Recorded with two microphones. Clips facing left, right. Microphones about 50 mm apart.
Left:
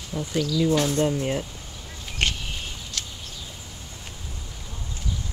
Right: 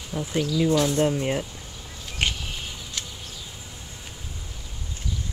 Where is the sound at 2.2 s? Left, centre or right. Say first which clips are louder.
Left 1 dB; centre.